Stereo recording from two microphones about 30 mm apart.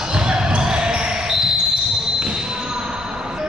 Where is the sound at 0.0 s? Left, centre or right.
Right.